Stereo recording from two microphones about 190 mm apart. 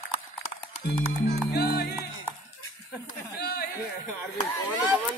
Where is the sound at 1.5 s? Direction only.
55° left (ahead or behind).